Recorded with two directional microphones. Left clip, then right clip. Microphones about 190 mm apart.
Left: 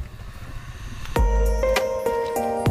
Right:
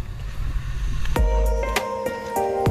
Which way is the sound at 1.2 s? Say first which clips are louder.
Left 1 dB; centre (ahead or behind).